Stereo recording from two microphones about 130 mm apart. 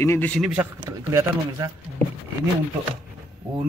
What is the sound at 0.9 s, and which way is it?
Speech, 25° right (ahead or behind).